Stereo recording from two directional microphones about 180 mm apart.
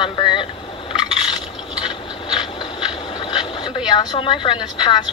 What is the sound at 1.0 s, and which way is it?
Scrape, 25° left (ahead or behind).